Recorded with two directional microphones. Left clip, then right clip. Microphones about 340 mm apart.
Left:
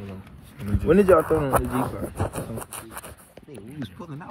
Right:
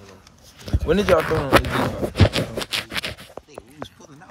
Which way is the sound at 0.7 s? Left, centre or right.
Right.